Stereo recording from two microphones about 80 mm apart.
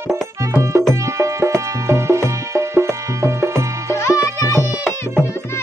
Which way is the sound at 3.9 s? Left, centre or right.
Left.